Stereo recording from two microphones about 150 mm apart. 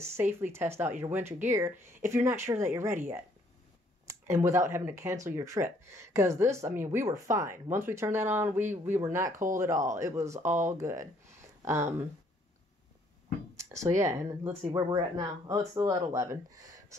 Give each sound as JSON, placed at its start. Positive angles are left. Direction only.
{"t": 0.0, "sound": "speech", "side_deg": -15}
{"t": 9.3, "sound": "speech", "side_deg": -60}
{"t": 9.8, "sound": "speech", "side_deg": -20}
{"t": 13.6, "sound": "speech", "side_deg": -20}